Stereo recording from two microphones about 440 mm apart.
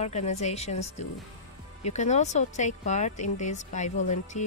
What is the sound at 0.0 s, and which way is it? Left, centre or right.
Speech, centre.